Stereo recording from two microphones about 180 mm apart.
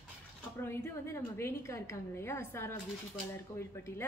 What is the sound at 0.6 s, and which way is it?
A woman's voice, 10° left (ahead or behind).